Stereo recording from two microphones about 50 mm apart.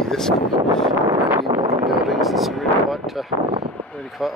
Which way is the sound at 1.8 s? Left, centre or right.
Centre.